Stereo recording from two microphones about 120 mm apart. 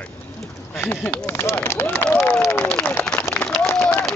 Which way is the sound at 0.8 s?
20° left (ahead or behind).